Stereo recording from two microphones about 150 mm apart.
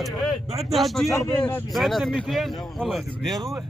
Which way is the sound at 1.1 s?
20° left (ahead or behind).